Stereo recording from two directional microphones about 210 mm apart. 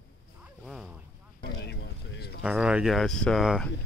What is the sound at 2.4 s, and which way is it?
Speech, 5° right (ahead or behind).